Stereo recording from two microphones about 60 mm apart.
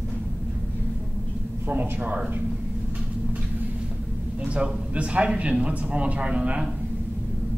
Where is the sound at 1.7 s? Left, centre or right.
Right.